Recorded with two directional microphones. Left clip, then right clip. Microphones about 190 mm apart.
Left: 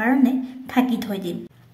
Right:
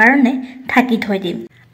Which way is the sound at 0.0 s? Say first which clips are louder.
Right 9 dB; 15° right (ahead or behind).